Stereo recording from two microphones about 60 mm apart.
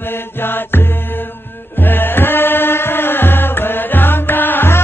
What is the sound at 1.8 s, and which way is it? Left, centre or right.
Music, left.